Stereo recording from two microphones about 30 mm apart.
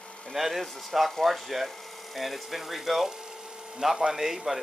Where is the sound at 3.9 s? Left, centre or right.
Right.